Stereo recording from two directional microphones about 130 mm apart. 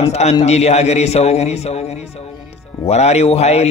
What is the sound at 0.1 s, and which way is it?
A man's voice, 55° left (ahead or behind).